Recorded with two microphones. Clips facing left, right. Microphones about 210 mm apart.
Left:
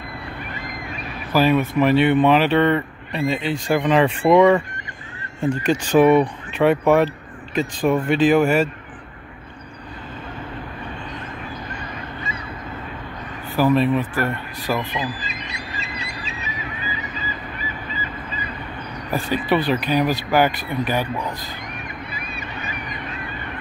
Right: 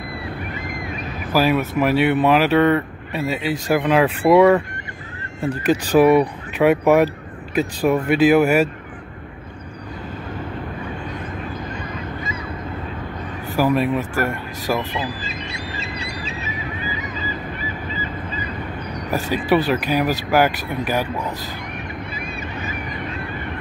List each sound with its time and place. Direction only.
1.3 s speech: 5° right (ahead or behind)
5.9 s speech: 10° right (ahead or behind)
13.6 s speech: 10° right (ahead or behind)
15.0 s a sound: 20° left (ahead or behind)
19.3 s speech: 5° right (ahead or behind)